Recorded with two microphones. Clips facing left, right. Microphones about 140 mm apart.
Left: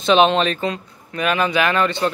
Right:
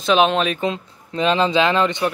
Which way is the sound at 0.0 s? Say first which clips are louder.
Left 2 dB; 5° right (ahead or behind).